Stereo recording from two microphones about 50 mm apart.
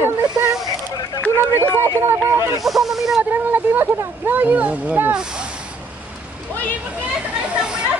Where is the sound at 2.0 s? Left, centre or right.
Right.